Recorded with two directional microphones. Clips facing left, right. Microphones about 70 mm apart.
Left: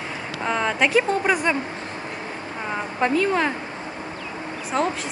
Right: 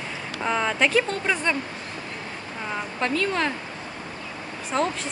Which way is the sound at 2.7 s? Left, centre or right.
Centre.